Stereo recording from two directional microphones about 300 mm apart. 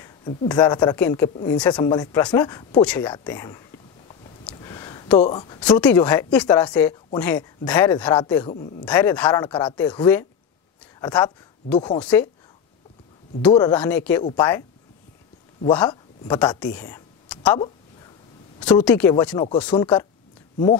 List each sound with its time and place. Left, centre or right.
0.3 s speech: centre
4.5 s a sound: centre
5.2 s speech: centre
5.8 s speech: centre
9.5 s speech: centre
13.5 s speech: centre
16.3 s speech: centre
18.9 s speech: centre